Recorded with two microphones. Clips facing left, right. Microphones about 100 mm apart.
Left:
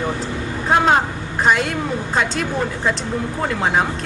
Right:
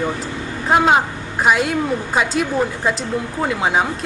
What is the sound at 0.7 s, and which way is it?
A woman's voice, 5° right (ahead or behind).